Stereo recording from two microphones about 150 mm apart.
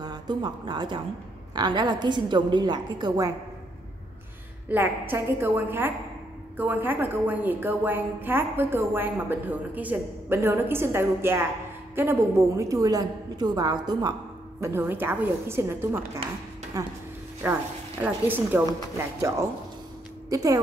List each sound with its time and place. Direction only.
0.0 s a woman's voice: 30° right (ahead or behind)
4.6 s a woman's voice: 15° right (ahead or behind)
14.6 s a woman's voice: 15° right (ahead or behind)